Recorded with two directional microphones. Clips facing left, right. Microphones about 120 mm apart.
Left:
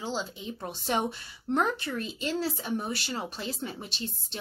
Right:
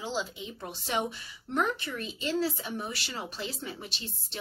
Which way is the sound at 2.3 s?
35° left (ahead or behind).